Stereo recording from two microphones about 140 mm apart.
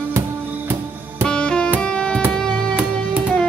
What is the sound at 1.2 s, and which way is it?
Music, 5° left (ahead or behind).